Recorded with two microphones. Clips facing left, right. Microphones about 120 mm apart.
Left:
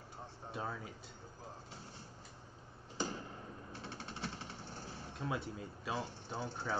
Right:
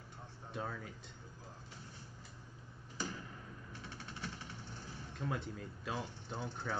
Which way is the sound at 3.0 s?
30° left (ahead or behind).